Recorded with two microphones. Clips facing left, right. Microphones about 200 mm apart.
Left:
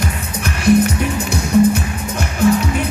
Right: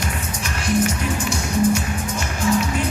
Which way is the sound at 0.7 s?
60° left (ahead or behind).